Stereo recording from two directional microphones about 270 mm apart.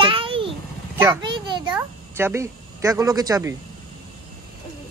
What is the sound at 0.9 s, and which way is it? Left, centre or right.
A child's voice, centre.